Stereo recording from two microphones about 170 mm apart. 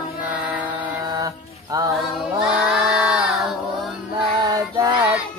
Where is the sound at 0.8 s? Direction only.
25° right (ahead or behind).